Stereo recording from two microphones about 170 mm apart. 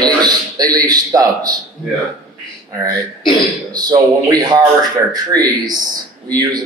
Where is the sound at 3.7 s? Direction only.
25° right (ahead or behind).